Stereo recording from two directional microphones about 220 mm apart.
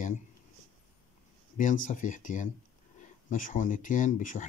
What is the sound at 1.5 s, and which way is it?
Speech, 35° left (ahead or behind).